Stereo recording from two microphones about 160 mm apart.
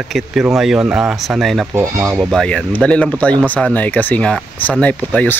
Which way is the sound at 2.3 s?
5° left (ahead or behind).